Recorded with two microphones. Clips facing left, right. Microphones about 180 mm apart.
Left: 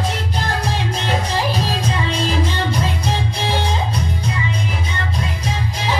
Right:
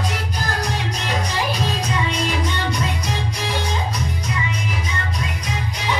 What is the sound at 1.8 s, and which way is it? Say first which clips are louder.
Music: left 2 dB; 30° left (ahead or behind).